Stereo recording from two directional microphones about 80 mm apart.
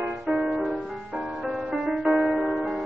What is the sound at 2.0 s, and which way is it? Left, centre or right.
Music, centre.